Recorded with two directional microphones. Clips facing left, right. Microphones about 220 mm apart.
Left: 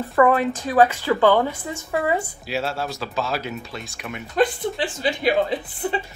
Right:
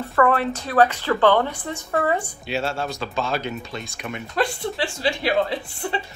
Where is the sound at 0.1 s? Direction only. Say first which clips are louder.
Left 2 dB; 15° left (ahead or behind).